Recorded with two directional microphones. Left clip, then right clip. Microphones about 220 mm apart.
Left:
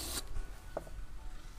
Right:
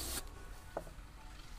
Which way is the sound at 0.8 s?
5° left (ahead or behind).